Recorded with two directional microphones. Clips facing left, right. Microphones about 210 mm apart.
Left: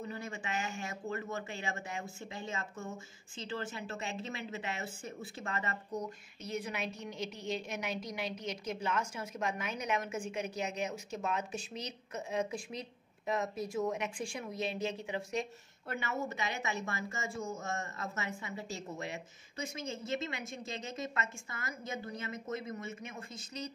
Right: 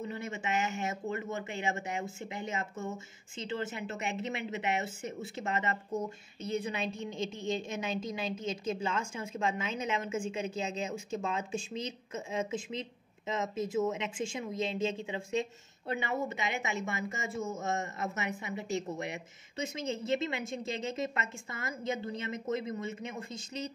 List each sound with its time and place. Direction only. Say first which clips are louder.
0.0 s a woman's voice: right 4 dB; 20° right (ahead or behind)